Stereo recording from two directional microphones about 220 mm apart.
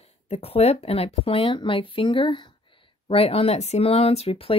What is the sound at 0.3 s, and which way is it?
Speech, 25° left (ahead or behind).